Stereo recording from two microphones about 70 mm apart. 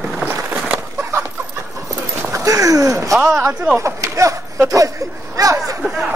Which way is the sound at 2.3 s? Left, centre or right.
Right.